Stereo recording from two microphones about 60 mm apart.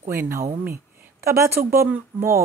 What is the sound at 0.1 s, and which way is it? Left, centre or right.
Speech, right.